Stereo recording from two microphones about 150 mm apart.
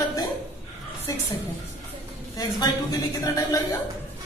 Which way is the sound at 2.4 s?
25° left (ahead or behind).